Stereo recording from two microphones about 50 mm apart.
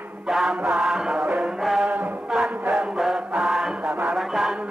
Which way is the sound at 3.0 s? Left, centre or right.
Centre.